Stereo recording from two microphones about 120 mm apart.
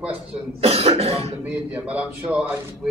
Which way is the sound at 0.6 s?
55° right (ahead or behind).